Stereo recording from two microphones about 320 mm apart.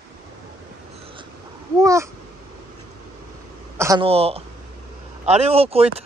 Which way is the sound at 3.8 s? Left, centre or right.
Centre.